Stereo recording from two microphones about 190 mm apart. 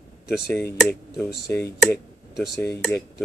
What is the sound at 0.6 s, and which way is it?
Speech, 10° left (ahead or behind).